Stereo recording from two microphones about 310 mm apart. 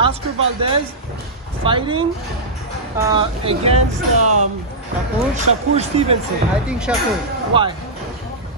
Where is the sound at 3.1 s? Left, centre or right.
Centre.